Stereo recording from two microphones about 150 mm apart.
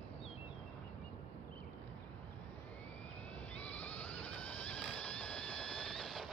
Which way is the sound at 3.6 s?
10° left (ahead or behind).